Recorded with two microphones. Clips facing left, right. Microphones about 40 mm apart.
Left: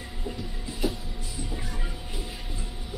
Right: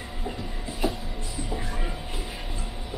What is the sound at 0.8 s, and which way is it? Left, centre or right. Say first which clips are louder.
Music: right 2 dB; centre.